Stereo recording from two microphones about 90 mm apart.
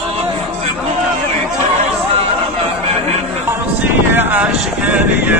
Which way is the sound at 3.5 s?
20° right (ahead or behind).